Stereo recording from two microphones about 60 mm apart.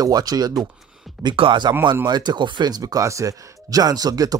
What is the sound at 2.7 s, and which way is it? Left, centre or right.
Speech, right.